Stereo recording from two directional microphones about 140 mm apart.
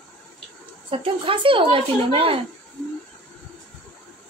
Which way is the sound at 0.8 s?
40° right (ahead or behind).